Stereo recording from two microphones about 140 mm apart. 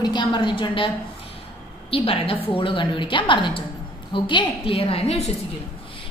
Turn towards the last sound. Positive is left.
turn(degrees=45)  # may be behind; listen again after turning